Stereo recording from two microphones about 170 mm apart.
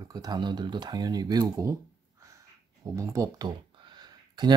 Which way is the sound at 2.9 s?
20° right (ahead or behind).